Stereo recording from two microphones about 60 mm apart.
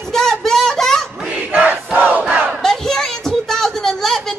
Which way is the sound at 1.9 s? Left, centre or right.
Right.